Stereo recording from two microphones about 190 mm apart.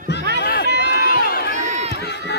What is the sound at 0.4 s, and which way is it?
Run, 60° left (ahead or behind).